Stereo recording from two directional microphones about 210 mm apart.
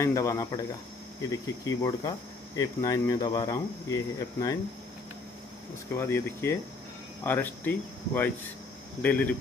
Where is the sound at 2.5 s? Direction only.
15° left (ahead or behind).